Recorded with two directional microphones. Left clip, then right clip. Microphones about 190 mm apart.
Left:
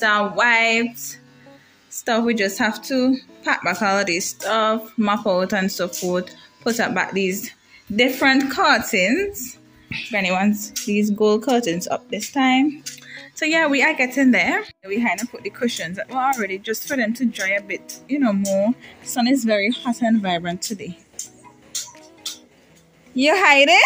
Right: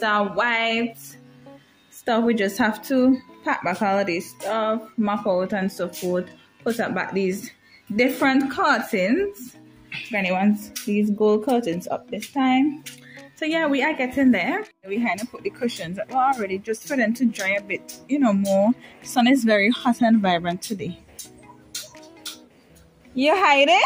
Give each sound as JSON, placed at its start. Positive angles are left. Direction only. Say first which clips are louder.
{"t": 0.0, "sound": "a woman's voice", "louder": "left 4 dB", "side_deg": -5}
{"t": 2.0, "sound": "a woman's voice", "louder": "left 1 dB", "side_deg": -10}
{"t": 23.1, "sound": "a woman's voice", "louder": "left 3 dB", "side_deg": 5}